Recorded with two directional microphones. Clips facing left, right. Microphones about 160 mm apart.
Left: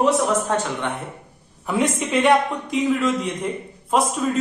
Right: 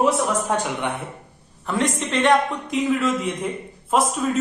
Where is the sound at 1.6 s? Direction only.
5° left (ahead or behind).